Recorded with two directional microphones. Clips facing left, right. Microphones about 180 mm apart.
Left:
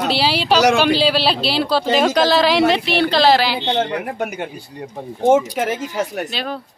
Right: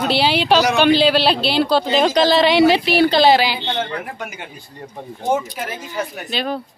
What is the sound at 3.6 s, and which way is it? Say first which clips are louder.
Speech: left 4 dB; 20° left (ahead or behind).